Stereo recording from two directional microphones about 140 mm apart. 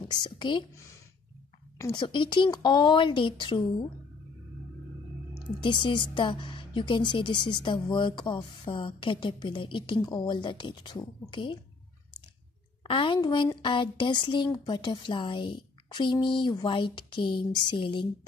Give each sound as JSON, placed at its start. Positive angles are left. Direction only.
{"t": 0.1, "sound": "a woman's voice", "side_deg": 35}
{"t": 0.7, "sound": "speech", "side_deg": 20}
{"t": 1.9, "sound": "a woman's voice", "side_deg": 35}
{"t": 5.6, "sound": "a woman's voice", "side_deg": 35}
{"t": 12.8, "sound": "a woman's voice", "side_deg": 35}